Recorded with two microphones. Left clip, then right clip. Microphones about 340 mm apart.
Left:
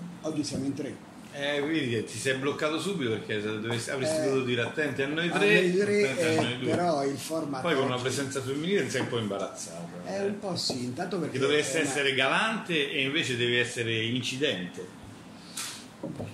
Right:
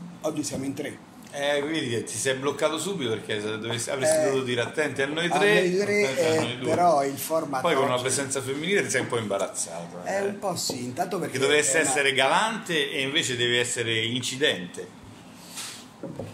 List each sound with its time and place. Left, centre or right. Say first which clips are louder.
1.4 s a man's voice: right 3 dB; centre